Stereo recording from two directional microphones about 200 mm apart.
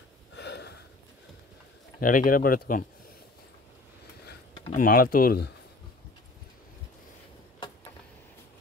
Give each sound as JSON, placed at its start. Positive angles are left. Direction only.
{"t": 0.3, "sound": "a sound", "side_deg": 60}
{"t": 2.0, "sound": "speech", "side_deg": 45}
{"t": 4.7, "sound": "speech", "side_deg": 45}